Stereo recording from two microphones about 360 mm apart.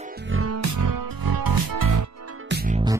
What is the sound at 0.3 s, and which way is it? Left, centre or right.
Music, right.